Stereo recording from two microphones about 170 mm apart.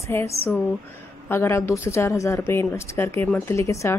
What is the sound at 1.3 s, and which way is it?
A woman's voice, 15° left (ahead or behind).